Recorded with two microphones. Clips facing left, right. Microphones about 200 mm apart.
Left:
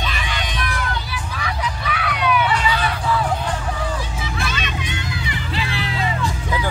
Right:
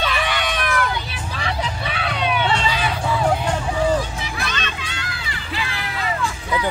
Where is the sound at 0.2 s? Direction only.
65° right (ahead or behind).